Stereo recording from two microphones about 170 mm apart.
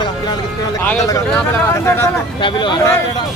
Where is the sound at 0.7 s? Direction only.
15° left (ahead or behind).